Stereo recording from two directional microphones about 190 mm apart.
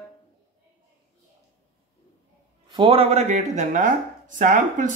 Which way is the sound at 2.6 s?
25° right (ahead or behind).